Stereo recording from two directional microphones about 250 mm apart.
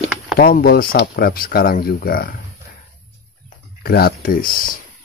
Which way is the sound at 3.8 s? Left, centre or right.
Left.